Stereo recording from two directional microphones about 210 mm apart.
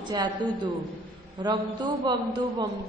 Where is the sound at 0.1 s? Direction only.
20° right (ahead or behind).